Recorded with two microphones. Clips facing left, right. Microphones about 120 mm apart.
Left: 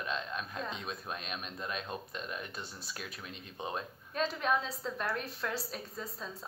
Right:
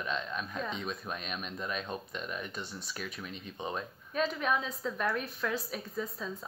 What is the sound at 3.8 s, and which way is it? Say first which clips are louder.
A woman's voice: right 2 dB; 30° left (ahead or behind).